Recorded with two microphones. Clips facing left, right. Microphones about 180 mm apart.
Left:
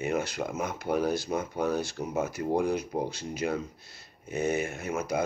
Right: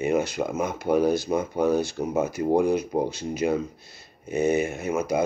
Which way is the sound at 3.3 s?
10° right (ahead or behind).